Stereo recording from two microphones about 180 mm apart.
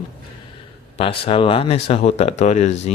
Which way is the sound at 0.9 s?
35° left (ahead or behind).